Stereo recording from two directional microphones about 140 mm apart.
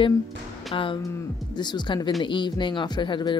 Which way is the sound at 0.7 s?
35° left (ahead or behind).